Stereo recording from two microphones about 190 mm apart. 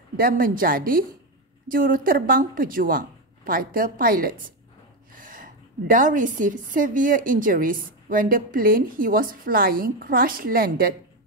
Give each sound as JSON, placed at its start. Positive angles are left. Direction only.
{"t": 0.2, "sound": "a woman's voice", "side_deg": -50}